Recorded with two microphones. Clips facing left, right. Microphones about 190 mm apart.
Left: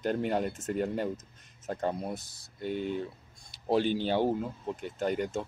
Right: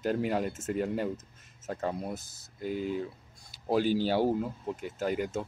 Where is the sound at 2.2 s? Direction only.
35° left (ahead or behind).